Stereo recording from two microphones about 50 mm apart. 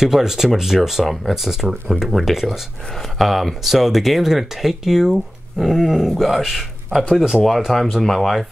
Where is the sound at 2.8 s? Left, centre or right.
Centre.